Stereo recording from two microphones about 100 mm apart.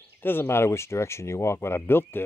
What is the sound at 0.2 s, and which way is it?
Speech, 20° left (ahead or behind).